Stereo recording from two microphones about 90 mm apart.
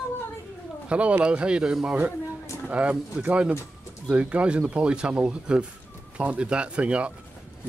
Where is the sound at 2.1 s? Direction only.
30° left (ahead or behind).